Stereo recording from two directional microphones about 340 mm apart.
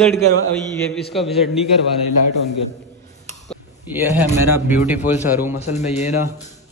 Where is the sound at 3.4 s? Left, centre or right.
Centre.